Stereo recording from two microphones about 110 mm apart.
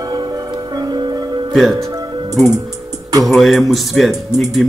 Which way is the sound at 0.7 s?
40° right (ahead or behind).